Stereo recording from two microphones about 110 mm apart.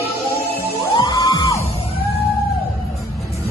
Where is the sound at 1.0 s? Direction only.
35° left (ahead or behind).